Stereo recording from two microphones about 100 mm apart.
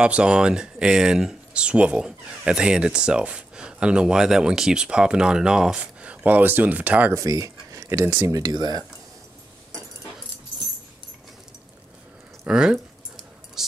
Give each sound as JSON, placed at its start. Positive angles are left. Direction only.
{"t": 0.0, "sound": "speech", "side_deg": -10}
{"t": 7.2, "sound": "speech", "side_deg": -35}
{"t": 8.4, "sound": "speech", "side_deg": -45}
{"t": 12.4, "sound": "speech", "side_deg": -10}
{"t": 13.6, "sound": "a sound", "side_deg": -5}